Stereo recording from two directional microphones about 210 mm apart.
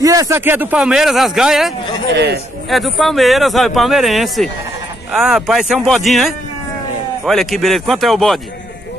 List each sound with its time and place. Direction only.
0.0 s speech: 15° right (ahead or behind); by 1.7 s centre (ahead or behind)
2.1 s a man's voice: 50° right (ahead or behind)
2.7 s speech: centre (ahead or behind)